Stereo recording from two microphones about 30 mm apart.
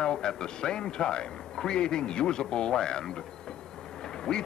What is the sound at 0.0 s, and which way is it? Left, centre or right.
Speech, left.